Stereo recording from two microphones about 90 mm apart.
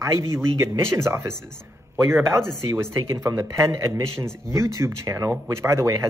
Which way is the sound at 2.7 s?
35° right (ahead or behind).